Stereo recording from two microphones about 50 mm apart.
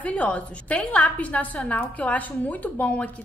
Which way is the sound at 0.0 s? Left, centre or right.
Left.